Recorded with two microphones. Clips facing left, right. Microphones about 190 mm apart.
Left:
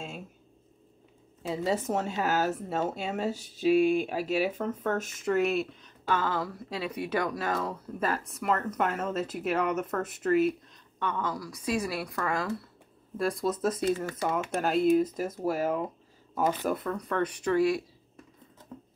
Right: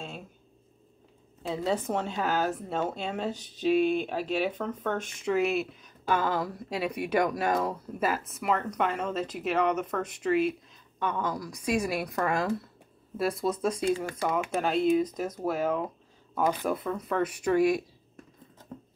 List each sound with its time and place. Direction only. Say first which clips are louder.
1.4 s speech: even; 5° left (ahead or behind); by 8.1 s 15° right (ahead or behind)
8.1 s speech: left 1 dB; 5° right (ahead or behind)
11.0 s a woman's voice: right 1 dB; 15° right (ahead or behind)
13.2 s speech: even; centre (ahead or behind)
13.8 s a woman's voice: right 1 dB; 15° right (ahead or behind)
14.6 s speech: left 2 dB; 5° left (ahead or behind)
17.5 s a woman's voice: right 2 dB; 20° right (ahead or behind)